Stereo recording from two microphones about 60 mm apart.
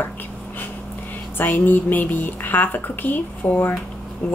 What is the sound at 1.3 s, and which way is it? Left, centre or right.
A woman's voice, left.